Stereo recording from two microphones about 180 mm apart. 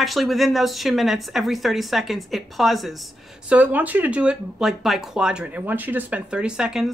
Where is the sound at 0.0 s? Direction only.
Centre (ahead or behind).